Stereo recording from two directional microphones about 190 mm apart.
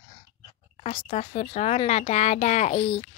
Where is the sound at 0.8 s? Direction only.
35° left (ahead or behind).